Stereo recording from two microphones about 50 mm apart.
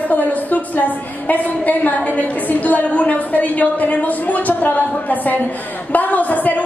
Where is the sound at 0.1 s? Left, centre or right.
Left.